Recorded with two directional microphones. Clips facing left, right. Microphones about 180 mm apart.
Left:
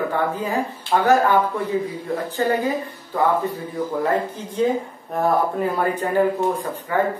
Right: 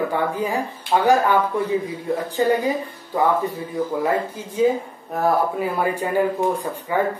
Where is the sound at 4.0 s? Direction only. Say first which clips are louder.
Even; 10° right (ahead or behind).